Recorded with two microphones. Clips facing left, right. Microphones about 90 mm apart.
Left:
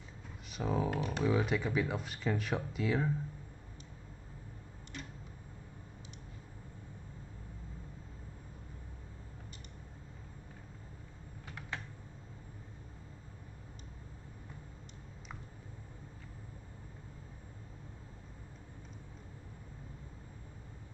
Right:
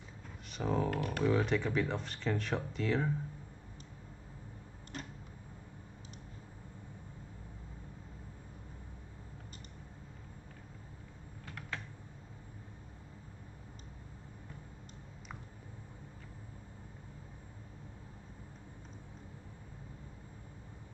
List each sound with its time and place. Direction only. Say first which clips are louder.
0.5 s speech: right 1 dB; 5° left (ahead or behind)
0.8 s speech: even; 15° left (ahead or behind)
1.2 s speech: right 1 dB; 5° left (ahead or behind)
4.9 s tick-tock: right 2 dB; 35° right (ahead or behind)
11.4 s typing: even; 15° left (ahead or behind)